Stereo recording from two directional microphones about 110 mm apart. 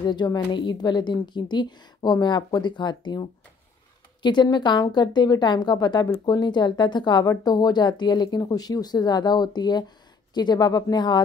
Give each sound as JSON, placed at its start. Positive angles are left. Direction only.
{"t": 0.0, "sound": "a woman's voice", "side_deg": 40}